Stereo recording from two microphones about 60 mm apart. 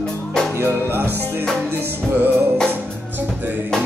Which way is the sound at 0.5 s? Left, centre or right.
Right.